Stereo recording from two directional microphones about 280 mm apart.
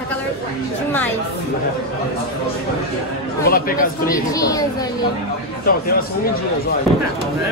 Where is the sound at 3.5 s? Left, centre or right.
Left.